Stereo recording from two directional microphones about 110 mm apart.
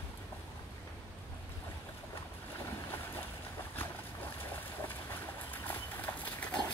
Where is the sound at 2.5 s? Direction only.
20° left (ahead or behind).